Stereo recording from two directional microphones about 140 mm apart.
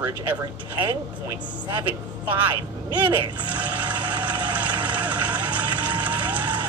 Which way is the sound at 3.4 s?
10° right (ahead or behind).